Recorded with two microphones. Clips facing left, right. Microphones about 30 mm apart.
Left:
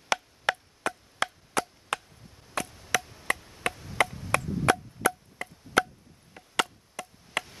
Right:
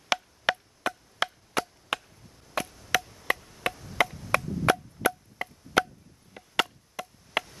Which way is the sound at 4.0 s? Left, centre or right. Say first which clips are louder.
Right 1 dB; centre.